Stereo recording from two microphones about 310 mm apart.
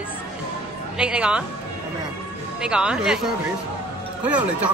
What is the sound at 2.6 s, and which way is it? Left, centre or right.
A woman's voice, centre.